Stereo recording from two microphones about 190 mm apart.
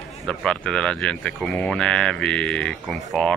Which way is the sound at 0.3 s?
5° left (ahead or behind).